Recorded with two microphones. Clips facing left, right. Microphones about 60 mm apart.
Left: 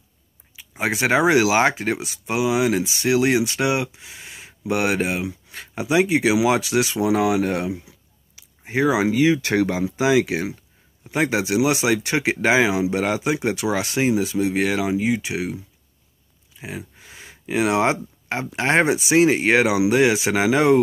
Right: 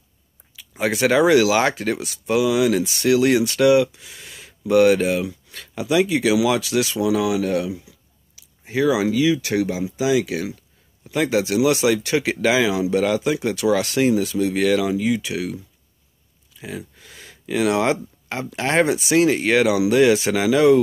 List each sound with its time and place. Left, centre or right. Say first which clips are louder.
0.6 s speech: right 2 dB; left